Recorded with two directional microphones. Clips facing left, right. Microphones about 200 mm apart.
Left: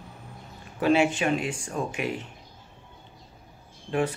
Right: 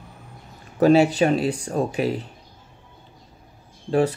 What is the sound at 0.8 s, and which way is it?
Speech, 40° right (ahead or behind).